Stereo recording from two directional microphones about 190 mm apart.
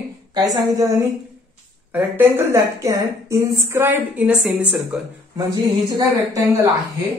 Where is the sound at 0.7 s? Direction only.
15° right (ahead or behind).